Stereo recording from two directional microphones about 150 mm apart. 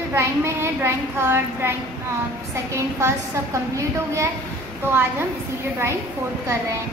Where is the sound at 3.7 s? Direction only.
20° right (ahead or behind).